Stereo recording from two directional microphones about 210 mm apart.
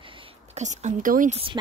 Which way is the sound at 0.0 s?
25° right (ahead or behind).